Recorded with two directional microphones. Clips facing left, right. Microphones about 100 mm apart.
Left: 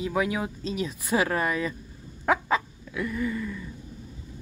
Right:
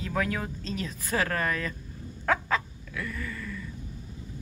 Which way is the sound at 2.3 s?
15° left (ahead or behind).